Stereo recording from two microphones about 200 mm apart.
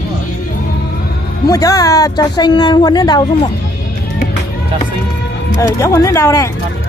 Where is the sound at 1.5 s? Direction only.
15° left (ahead or behind).